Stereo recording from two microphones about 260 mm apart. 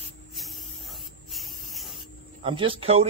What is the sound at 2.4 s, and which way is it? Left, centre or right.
Speech, centre.